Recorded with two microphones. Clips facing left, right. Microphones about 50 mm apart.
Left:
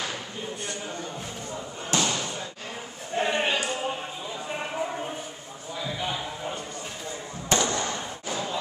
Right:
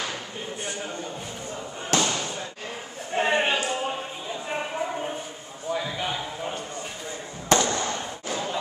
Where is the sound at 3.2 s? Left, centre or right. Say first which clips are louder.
Right 3 dB; right.